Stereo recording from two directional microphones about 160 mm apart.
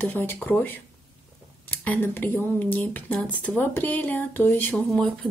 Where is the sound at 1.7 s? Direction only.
10° left (ahead or behind).